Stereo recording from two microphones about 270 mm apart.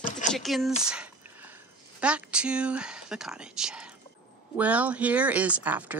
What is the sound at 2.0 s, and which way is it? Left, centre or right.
Speech, centre.